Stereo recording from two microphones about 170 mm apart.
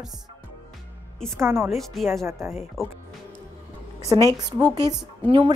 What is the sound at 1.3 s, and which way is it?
Speech, 15° right (ahead or behind).